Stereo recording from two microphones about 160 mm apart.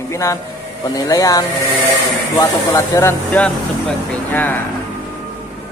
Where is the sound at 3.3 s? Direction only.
5° left (ahead or behind).